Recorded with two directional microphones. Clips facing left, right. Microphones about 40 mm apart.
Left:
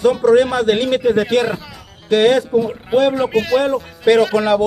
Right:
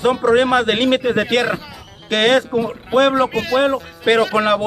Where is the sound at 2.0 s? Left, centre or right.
Right.